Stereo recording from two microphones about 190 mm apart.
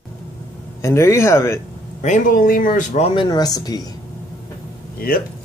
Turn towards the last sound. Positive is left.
turn(degrees=50)  # may be behind; listen again after turning